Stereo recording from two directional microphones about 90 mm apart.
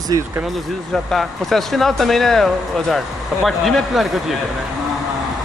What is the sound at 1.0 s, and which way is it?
Speech, centre (ahead or behind).